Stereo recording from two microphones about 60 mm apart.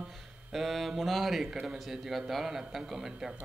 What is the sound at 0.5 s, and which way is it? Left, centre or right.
A man's voice, centre.